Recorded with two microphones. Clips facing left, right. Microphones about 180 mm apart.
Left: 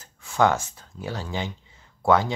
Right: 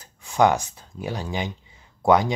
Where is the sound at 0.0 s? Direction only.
15° right (ahead or behind).